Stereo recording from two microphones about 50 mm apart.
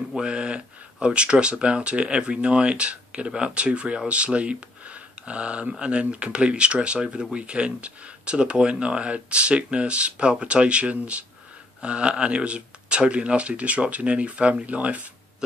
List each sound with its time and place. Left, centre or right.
0.2 s speech: centre